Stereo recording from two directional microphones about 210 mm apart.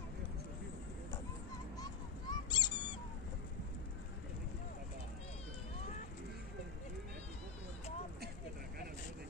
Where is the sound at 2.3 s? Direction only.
20° left (ahead or behind).